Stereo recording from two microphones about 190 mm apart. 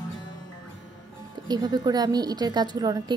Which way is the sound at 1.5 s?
20° right (ahead or behind).